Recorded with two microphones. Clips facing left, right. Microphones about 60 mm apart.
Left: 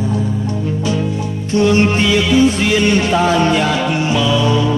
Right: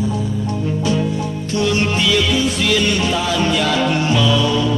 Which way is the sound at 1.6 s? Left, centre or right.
Left.